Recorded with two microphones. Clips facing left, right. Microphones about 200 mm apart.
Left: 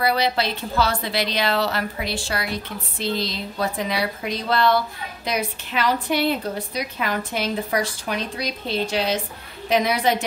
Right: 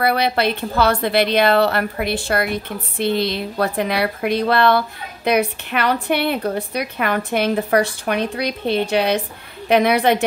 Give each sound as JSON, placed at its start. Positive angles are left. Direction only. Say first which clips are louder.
{"t": 0.0, "sound": "a woman's voice", "louder": "right 3 dB", "side_deg": -60}